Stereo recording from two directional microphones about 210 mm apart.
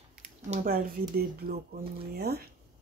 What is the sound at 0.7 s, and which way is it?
Speech, 45° right (ahead or behind).